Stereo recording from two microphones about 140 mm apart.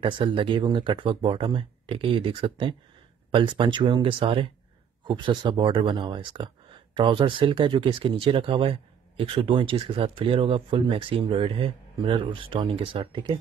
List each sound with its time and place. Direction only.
0.0 s speech: 40° right (ahead or behind)